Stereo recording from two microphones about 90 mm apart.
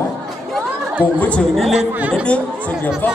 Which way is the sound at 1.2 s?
15° left (ahead or behind).